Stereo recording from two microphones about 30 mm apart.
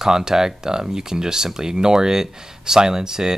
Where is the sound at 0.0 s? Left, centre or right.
Centre.